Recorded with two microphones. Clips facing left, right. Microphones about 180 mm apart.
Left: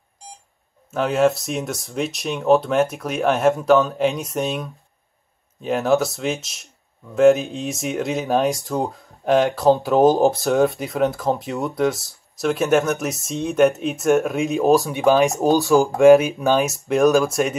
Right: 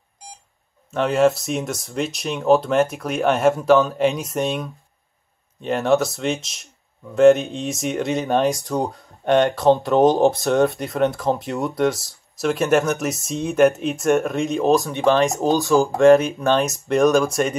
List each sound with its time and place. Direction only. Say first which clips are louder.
0.9 s speech: right 1 dB; centre (ahead or behind)
15.4 s speech: left 2 dB; 15° left (ahead or behind)
16.0 s speech: left 2 dB; 5° left (ahead or behind)